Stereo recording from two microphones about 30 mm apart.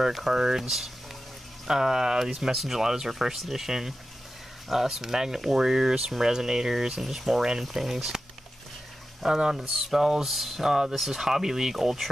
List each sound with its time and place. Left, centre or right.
0.3 s speech: centre
1.7 s speech: right
2.5 s speech: centre
2.8 s speech: centre
7.0 s speech: centre
9.2 s speech: centre
11.7 s speech: centre